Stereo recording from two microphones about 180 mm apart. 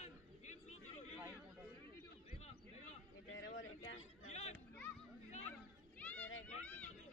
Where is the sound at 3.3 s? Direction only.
90° left.